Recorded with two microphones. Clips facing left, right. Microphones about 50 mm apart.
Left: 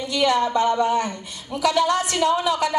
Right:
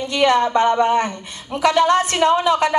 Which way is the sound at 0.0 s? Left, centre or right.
Right.